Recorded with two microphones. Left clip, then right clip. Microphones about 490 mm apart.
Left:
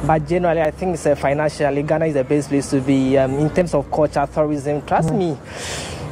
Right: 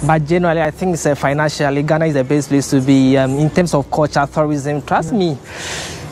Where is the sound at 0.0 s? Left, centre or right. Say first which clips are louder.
Right 3 dB; right.